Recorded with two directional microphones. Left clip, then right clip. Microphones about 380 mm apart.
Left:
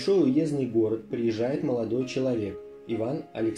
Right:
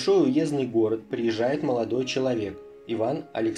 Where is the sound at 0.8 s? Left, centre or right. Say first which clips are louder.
Right 2 dB; right.